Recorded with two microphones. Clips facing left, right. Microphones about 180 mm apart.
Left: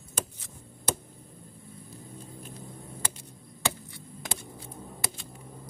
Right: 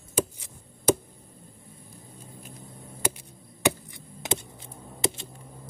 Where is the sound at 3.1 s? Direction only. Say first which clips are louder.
Left 1 dB; 15° right (ahead or behind).